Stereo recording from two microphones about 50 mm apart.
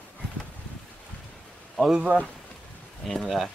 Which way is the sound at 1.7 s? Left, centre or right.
Centre.